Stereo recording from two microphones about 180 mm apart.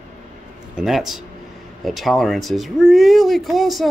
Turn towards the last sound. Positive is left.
turn(degrees=0)  # may be behind; listen again after turning